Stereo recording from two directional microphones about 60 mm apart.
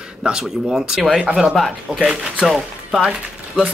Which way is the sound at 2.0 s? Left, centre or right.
Centre.